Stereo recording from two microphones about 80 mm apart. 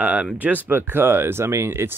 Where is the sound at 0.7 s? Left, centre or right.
Right.